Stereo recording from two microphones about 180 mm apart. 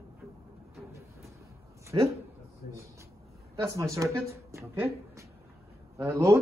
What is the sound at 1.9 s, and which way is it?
Speech, 20° right (ahead or behind).